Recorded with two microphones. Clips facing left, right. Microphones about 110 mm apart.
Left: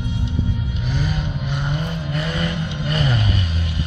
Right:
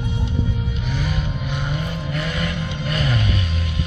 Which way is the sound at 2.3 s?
25° left (ahead or behind).